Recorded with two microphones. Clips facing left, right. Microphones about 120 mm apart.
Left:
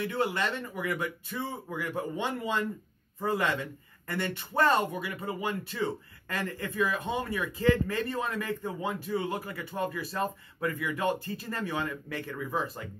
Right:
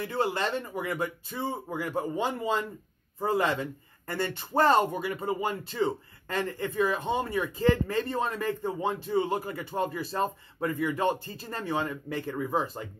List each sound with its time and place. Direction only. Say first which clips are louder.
0.0 s speech: right 1 dB; 30° right (ahead or behind)